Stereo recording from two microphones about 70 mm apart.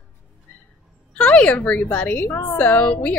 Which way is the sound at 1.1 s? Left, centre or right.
Centre.